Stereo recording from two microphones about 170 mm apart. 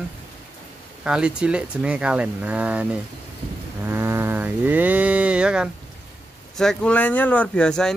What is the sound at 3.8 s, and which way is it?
Cattle, 15° right (ahead or behind).